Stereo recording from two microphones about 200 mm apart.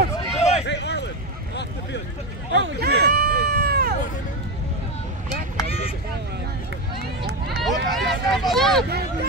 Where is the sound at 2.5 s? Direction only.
60° right (ahead or behind).